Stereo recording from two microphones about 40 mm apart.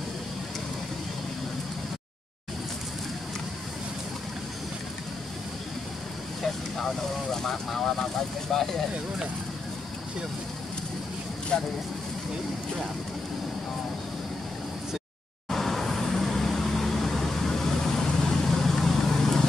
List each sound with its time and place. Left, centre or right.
7.4 s speech: centre
11.5 s speech: centre
15.5 s vehicle: centre